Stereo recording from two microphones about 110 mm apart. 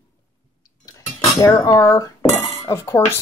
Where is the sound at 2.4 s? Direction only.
25° left (ahead or behind).